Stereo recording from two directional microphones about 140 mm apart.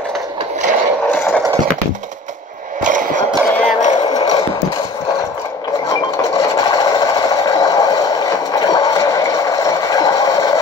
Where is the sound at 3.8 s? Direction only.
55° left (ahead or behind).